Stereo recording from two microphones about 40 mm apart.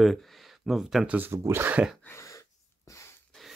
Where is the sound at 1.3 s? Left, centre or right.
Right.